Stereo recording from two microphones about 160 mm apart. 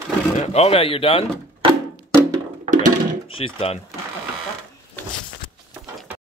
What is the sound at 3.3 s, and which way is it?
Speech, 35° left (ahead or behind).